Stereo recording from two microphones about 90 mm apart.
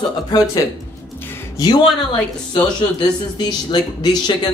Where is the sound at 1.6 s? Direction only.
40° left (ahead or behind).